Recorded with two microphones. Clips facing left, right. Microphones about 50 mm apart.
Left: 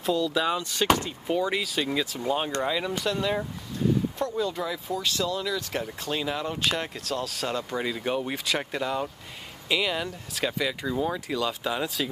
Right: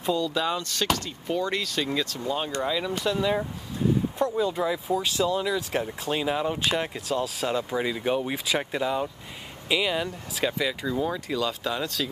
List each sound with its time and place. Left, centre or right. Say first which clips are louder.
0.0 s speech: left 1 dB; centre
4.2 s speech: right 3 dB; centre